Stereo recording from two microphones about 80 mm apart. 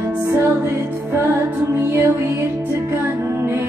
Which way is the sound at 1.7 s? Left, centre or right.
Right.